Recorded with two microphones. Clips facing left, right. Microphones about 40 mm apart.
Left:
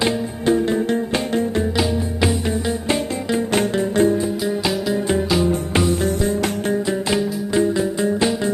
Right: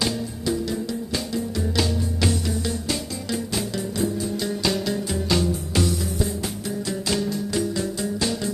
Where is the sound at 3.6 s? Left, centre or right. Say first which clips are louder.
Left 10 dB; left.